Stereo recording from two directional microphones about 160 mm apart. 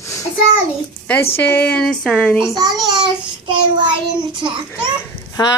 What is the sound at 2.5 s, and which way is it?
A child's voice, 25° right (ahead or behind).